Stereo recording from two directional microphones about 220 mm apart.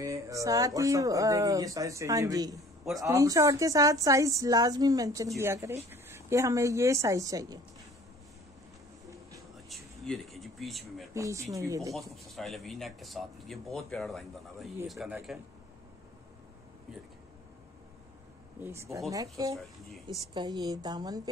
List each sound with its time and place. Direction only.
0.0 s speech: 15° right (ahead or behind)
9.7 s speech: centre (ahead or behind)
11.1 s speech: 15° right (ahead or behind)
12.3 s speech: centre (ahead or behind)
18.6 s speech: 10° right (ahead or behind)